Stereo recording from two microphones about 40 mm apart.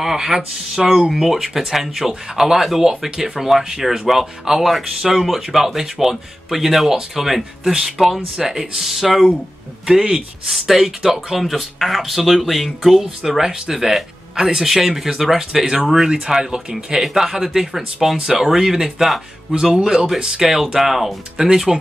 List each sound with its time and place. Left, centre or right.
0.0 s speech: centre
19.5 s speech: centre